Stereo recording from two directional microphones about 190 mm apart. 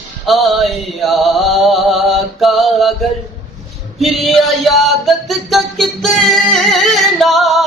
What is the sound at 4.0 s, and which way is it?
Music, centre (ahead or behind).